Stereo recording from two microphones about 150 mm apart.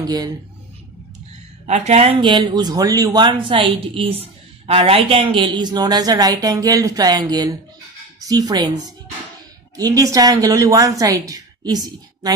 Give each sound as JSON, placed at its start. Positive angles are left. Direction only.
{"t": 0.0, "sound": "speech", "side_deg": -25}
{"t": 1.7, "sound": "speech", "side_deg": -45}